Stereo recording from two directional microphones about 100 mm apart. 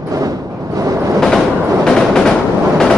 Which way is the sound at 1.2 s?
Centre (ahead or behind).